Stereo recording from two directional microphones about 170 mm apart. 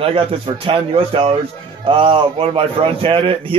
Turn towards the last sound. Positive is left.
turn(degrees=-30)  # may be behind; listen again after turning